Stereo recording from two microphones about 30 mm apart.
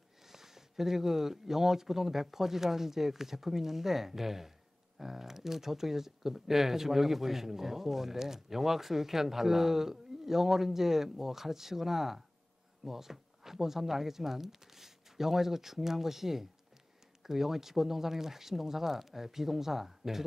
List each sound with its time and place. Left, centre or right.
0.3 s speech: centre